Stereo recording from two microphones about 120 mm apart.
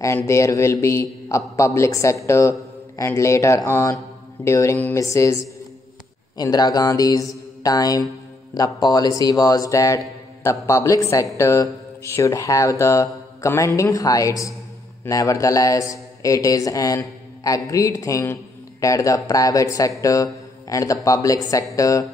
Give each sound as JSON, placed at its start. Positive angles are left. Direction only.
{"t": 0.0, "sound": "a man's voice", "side_deg": 25}
{"t": 7.0, "sound": "mantra", "side_deg": 30}
{"t": 8.5, "sound": "a man's voice", "side_deg": 35}